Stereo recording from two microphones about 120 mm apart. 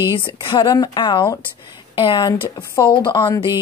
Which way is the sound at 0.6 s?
35° left (ahead or behind).